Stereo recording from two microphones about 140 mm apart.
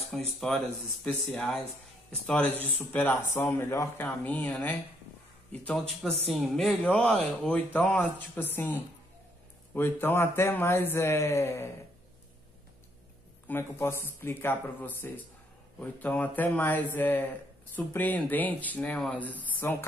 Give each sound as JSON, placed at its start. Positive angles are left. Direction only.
{"t": 0.1, "sound": "speech", "side_deg": 0}
{"t": 1.3, "sound": "speech", "side_deg": 10}
{"t": 2.6, "sound": "a man's voice", "side_deg": 15}
{"t": 13.5, "sound": "speech", "side_deg": 15}